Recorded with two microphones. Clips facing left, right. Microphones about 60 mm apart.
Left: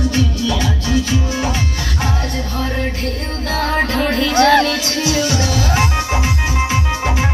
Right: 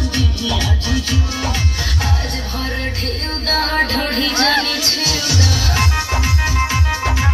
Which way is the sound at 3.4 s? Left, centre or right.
Centre.